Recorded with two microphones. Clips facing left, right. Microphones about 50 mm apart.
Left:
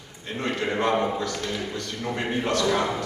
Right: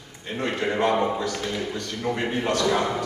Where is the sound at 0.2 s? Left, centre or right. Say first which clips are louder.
Right 1 dB; centre.